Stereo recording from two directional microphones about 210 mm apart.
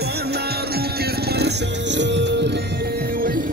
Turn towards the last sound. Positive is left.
turn(degrees=-40)  # may be behind; listen again after turning